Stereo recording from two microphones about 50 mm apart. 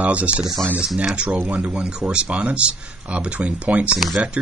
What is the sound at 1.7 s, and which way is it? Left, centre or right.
Speech, centre.